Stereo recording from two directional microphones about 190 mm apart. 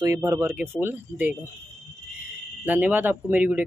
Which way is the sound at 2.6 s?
10° right (ahead or behind).